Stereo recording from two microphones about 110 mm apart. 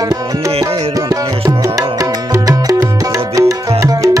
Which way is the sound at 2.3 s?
30° right (ahead or behind).